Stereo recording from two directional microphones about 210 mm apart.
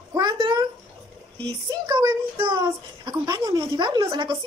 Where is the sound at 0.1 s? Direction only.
20° right (ahead or behind).